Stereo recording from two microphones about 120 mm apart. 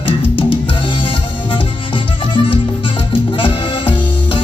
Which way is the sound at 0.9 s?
45° left (ahead or behind).